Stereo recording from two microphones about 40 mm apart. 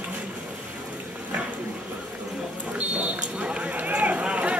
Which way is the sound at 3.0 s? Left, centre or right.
Right.